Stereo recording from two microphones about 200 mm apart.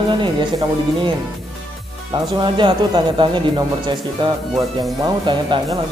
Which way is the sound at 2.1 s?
25° right (ahead or behind).